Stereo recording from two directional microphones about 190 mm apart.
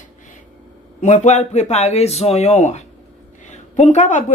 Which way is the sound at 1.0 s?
35° left (ahead or behind).